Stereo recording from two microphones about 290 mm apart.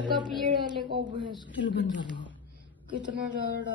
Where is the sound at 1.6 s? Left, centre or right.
Left.